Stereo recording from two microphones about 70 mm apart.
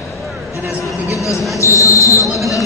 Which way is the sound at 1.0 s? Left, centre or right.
Left.